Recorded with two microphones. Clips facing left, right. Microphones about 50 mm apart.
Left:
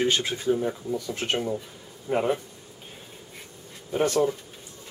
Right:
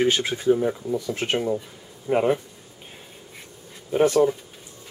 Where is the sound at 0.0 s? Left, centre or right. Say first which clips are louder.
Right 3 dB; centre.